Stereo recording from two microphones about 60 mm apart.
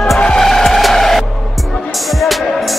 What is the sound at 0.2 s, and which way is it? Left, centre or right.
Vehicle, centre.